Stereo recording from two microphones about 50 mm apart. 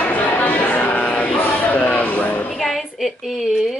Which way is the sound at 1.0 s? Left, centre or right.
Left.